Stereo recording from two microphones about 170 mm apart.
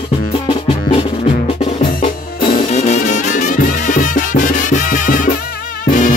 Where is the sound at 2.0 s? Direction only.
50° left (ahead or behind).